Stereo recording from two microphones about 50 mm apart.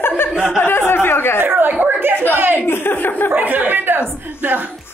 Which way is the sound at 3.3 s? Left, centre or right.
Right.